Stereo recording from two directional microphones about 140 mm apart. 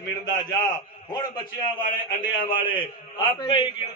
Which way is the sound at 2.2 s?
35° left (ahead or behind).